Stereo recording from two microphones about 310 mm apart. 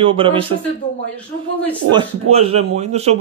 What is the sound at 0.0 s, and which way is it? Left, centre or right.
Speech, centre.